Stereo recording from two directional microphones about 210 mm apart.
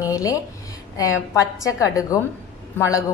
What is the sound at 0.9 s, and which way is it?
A woman's voice, 15° left (ahead or behind).